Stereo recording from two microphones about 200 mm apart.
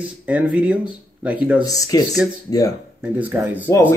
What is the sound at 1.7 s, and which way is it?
Speech, 20° left (ahead or behind).